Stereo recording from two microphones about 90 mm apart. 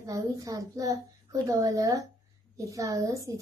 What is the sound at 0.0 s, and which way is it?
A woman's voice, 40° right (ahead or behind).